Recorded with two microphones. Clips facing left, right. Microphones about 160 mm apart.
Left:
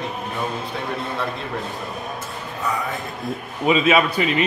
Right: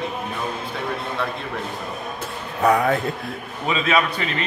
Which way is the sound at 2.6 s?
65° right (ahead or behind).